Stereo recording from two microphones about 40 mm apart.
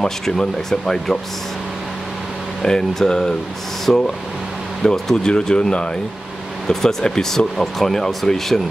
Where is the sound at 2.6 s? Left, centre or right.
Centre.